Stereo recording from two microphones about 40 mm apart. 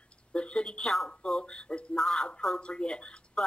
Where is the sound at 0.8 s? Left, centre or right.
Centre.